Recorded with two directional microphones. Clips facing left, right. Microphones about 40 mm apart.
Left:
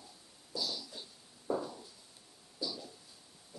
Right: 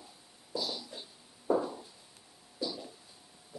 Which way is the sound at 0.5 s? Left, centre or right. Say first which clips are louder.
Right 3 dB; right.